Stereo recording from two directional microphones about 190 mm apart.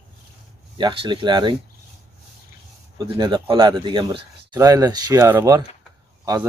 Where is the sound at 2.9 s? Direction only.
20° right (ahead or behind).